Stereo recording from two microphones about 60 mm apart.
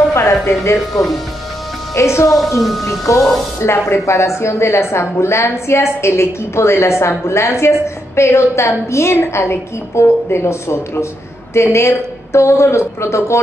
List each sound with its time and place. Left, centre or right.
0.1 s a sound: left
2.0 s a woman's voice: left
3.6 s a woman's voice: left